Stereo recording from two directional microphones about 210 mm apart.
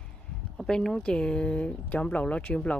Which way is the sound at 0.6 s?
Centre (ahead or behind).